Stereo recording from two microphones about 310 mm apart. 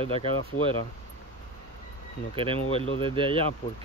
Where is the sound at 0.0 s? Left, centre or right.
Centre.